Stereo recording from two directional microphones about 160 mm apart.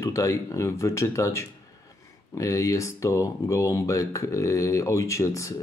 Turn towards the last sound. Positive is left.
turn(degrees=20)  # may be behind; listen again after turning